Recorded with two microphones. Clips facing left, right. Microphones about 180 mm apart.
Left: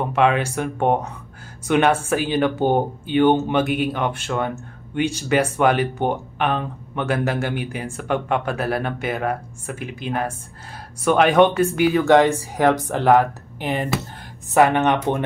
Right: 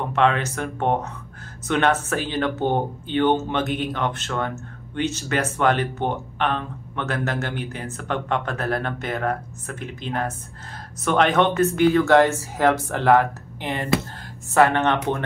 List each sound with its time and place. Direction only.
0.1 s speech: 10° left (ahead or behind)